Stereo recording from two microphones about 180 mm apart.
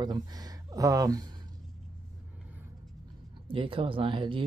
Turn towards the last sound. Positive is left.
turn(degrees=-30)  # may be behind; listen again after turning